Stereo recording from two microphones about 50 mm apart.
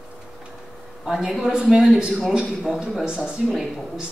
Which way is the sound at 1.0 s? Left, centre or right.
Centre.